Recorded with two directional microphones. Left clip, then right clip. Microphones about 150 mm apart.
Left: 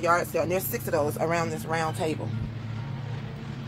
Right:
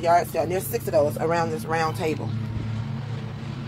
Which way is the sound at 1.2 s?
45° left (ahead or behind).